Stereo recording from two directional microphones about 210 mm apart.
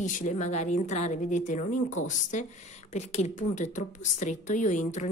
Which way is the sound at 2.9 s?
35° left (ahead or behind).